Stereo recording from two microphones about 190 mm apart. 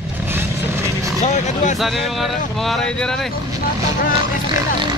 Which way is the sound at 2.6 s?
5° left (ahead or behind).